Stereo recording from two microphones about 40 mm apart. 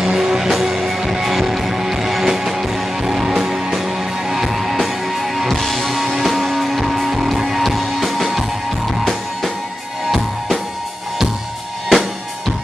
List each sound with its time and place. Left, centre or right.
0.0 s music: centre
11.9 s drum: centre